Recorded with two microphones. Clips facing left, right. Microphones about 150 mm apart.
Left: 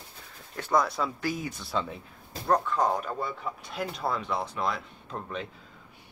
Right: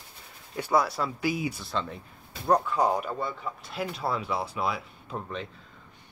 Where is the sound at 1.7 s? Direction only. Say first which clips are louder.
Left 1 dB; 5° left (ahead or behind).